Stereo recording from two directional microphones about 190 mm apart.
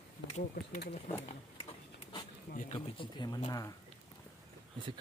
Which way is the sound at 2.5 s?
45° left (ahead or behind).